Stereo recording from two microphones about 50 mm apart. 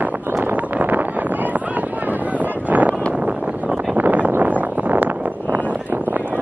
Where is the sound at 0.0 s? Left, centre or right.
Right.